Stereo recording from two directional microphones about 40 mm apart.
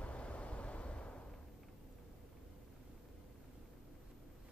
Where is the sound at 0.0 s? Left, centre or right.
Left.